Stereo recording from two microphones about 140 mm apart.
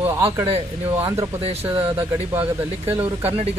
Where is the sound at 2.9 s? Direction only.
10° right (ahead or behind).